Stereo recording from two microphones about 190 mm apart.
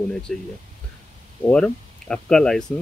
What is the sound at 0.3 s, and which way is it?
Speech, 5° left (ahead or behind).